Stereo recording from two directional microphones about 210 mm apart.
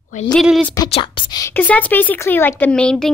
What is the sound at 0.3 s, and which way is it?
Speech, centre (ahead or behind).